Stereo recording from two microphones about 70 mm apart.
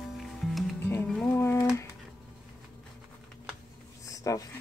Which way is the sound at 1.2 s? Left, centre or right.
Left.